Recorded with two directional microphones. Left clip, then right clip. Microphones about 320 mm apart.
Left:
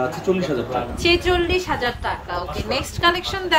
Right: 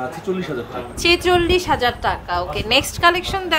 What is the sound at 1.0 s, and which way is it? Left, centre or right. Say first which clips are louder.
A woman's voice: right 4 dB; centre.